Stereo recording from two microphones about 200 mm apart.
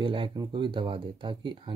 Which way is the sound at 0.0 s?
25° right (ahead or behind).